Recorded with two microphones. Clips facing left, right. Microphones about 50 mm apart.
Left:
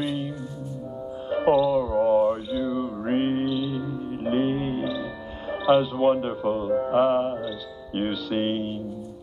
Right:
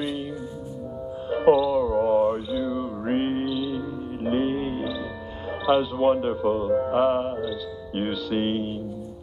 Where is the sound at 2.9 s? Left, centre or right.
Centre.